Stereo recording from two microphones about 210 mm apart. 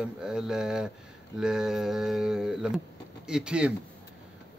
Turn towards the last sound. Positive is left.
turn(degrees=-5)  # may be behind; listen again after turning